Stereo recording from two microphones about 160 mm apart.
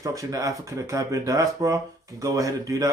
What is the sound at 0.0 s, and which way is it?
Speech, 20° right (ahead or behind).